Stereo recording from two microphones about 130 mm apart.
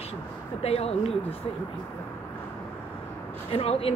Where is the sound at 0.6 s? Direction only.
50° left (ahead or behind).